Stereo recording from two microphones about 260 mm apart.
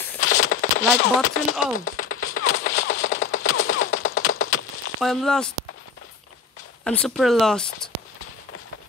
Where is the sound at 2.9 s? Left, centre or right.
Left.